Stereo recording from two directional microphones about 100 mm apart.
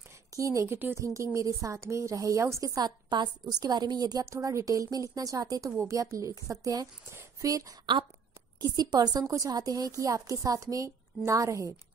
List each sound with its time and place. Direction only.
0.4 s a woman's voice: 30° right (ahead or behind)
8.5 s a woman's voice: 40° right (ahead or behind)